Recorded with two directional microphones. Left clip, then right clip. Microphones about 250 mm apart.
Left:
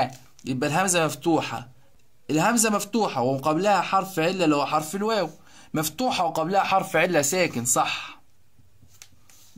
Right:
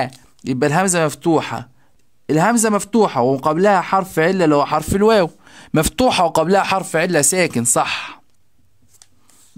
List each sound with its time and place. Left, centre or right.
0.0 s speech: right